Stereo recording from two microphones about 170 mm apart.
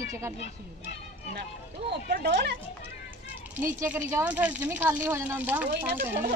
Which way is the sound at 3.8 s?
15° right (ahead or behind).